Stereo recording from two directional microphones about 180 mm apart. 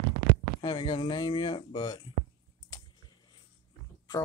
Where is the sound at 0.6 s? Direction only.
25° left (ahead or behind).